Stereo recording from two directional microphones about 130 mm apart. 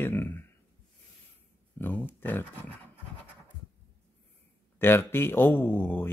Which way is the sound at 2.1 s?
15° left (ahead or behind).